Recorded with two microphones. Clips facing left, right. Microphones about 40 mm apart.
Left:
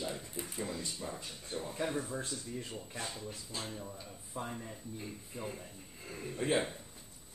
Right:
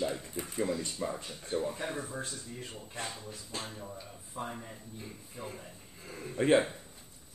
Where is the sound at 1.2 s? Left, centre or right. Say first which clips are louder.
Right 6 dB; right.